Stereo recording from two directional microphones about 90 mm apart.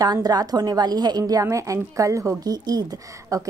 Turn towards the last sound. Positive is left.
turn(degrees=-40)  # may be behind; listen again after turning